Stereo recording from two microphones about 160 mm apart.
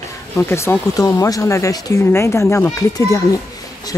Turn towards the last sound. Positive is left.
turn(degrees=20)  # may be behind; listen again after turning